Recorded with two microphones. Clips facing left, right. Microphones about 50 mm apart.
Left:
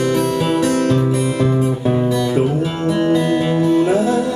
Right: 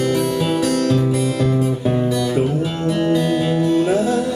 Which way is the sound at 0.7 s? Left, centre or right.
Left.